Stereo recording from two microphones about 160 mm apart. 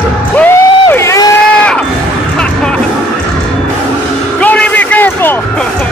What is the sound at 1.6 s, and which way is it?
Crowd, 10° left (ahead or behind).